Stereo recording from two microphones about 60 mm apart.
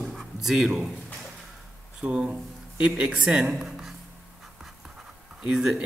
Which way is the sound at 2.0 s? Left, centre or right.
Centre.